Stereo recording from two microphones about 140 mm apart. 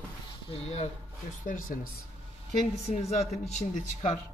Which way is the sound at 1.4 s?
75° left (ahead or behind).